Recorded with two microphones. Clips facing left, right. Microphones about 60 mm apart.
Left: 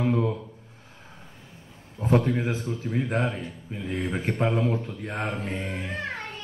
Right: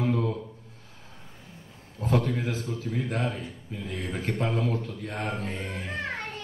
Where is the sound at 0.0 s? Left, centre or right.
Centre.